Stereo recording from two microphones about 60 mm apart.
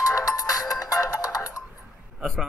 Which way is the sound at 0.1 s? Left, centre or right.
Left.